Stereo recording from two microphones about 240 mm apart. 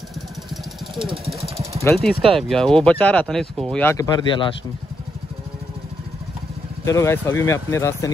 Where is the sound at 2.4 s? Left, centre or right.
Centre.